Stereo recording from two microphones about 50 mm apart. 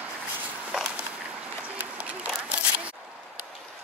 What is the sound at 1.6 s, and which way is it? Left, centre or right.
Applause, right.